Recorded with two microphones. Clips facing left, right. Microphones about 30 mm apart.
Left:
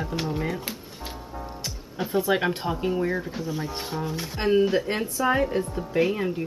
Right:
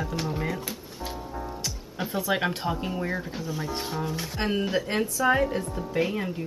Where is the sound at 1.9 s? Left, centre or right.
Centre.